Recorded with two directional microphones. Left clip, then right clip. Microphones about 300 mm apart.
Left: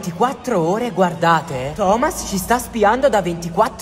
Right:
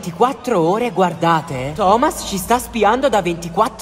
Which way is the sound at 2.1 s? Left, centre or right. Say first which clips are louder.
Right 1 dB; right.